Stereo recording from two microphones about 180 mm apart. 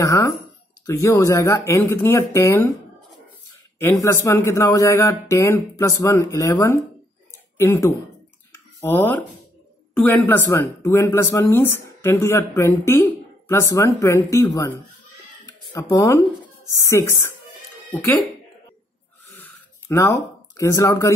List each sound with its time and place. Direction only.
0.0 s speech: 15° left (ahead or behind)
3.8 s speech: 15° left (ahead or behind)
15.7 s speech: 15° left (ahead or behind)
19.5 s a sound: 15° left (ahead or behind)